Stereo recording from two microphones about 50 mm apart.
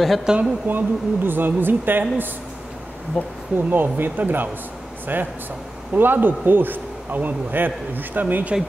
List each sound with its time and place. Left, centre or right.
0.2 s speech: centre
0.7 s speech: right
3.2 s speech: centre
3.5 s speech: right